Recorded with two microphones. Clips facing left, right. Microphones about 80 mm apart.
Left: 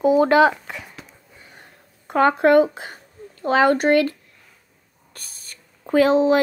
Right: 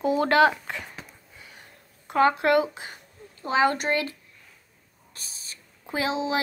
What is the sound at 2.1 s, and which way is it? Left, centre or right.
A woman's voice, left.